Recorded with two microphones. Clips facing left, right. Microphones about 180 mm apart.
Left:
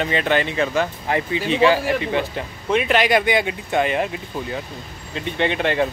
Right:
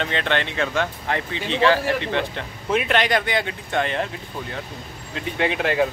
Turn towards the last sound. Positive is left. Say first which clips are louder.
# left 1 dB
turn(degrees=0)  # may be behind; listen again after turning